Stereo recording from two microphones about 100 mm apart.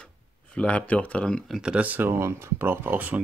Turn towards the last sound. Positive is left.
turn(degrees=-15)  # may be behind; listen again after turning